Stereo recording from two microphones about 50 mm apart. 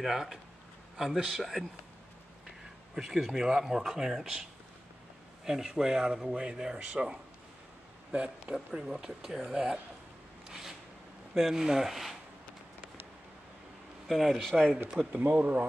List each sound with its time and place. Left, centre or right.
0.0 s speech: centre
1.4 s speech: centre; by 8.5 s right
8.8 s speech: centre
10.5 s a sound: centre
11.3 s speech: centre
14.0 s speech: centre
15.2 s speech: right